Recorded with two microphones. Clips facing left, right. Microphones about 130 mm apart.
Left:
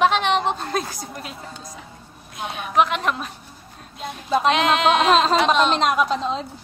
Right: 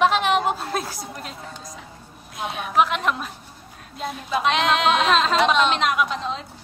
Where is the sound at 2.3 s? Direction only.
Centre (ahead or behind).